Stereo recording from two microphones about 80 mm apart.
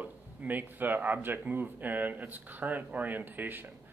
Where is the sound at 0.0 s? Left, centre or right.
Right.